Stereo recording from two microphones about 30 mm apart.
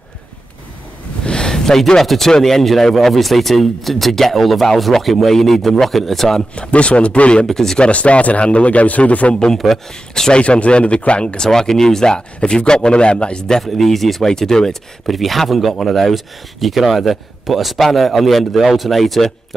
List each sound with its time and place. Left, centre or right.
1.2 s a sound: left
1.5 s a sound: centre
2.0 s a man's voice: centre
6.5 s speech: left
7.4 s a man's voice: centre
7.8 s a man's voice: left
10.4 s speech: left
11.5 s a man's voice: centre
12.2 s speech: left
13.7 s speech: centre
14.2 s a man's voice: centre
15.0 s speech: centre